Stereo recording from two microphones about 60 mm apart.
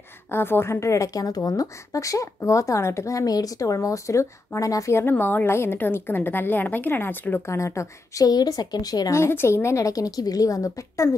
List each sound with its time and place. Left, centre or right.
0.3 s a woman's voice: left
5.2 s a woman's voice: left
7.4 s a woman's voice: left
9.1 s a woman's voice: left